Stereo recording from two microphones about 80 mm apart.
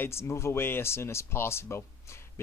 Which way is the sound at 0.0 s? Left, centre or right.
Left.